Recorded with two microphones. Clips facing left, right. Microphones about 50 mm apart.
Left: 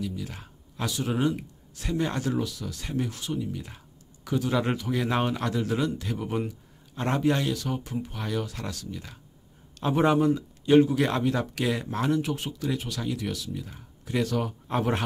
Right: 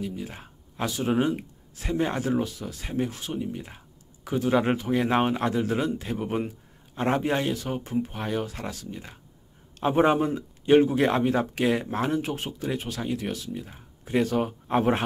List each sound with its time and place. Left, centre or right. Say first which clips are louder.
0.0 s speech: right 1 dB; right
2.7 s a man's voice: right 2 dB; centre